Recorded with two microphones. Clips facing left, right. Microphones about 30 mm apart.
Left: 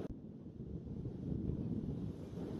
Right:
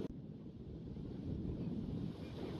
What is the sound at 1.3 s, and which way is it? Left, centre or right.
Wind noise, right.